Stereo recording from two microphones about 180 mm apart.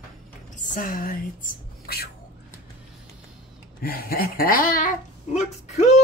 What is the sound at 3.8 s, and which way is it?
Speech, 55° left (ahead or behind).